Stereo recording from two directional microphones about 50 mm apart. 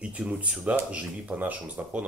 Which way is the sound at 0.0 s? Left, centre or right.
Right.